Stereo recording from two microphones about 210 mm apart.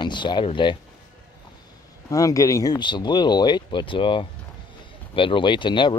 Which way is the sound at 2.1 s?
15° left (ahead or behind).